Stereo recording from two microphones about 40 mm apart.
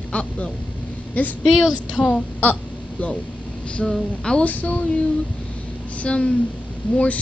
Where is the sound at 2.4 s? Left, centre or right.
Left.